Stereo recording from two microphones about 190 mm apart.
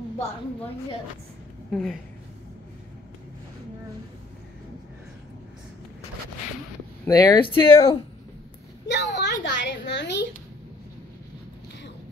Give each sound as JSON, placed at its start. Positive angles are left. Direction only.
{"t": 1.7, "sound": "speech", "side_deg": 5}
{"t": 7.1, "sound": "speech", "side_deg": 20}
{"t": 8.8, "sound": "a sound", "side_deg": 65}